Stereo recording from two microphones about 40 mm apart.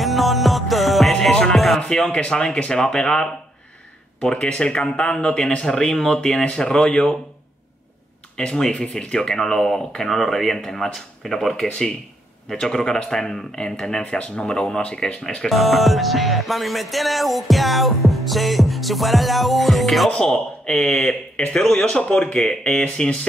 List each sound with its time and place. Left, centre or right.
0.0 s music: centre
1.3 s music: centre
1.9 s a man's voice: centre
8.4 s a man's voice: centre
14.1 s a man's voice: left
15.4 s music: centre
20.1 s a man's voice: centre